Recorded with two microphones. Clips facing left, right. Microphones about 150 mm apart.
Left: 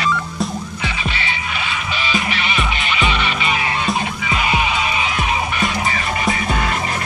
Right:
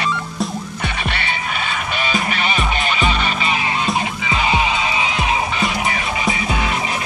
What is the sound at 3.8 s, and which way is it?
Music, 25° right (ahead or behind).